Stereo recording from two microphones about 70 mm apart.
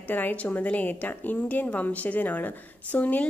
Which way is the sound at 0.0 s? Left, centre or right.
Left.